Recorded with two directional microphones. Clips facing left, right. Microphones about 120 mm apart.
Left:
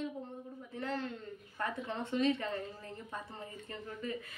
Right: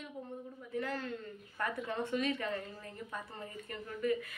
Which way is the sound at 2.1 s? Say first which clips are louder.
Left 5 dB; 25° left (ahead or behind).